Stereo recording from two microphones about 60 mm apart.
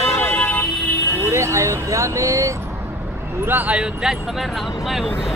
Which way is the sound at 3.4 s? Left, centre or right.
Right.